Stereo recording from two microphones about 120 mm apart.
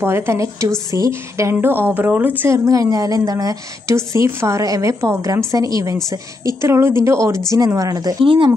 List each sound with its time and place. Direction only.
0.0 s a woman's voice: 20° right (ahead or behind)